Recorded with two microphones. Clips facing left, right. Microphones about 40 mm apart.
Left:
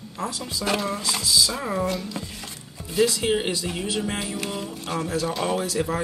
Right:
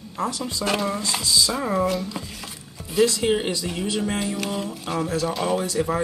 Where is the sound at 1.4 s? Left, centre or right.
Centre.